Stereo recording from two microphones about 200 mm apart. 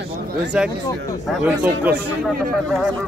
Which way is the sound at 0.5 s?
5° right (ahead or behind).